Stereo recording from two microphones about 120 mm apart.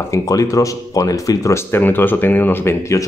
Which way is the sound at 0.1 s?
25° left (ahead or behind).